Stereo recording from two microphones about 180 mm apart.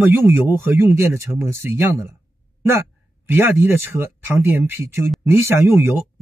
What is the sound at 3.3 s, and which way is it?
Speech, 10° right (ahead or behind).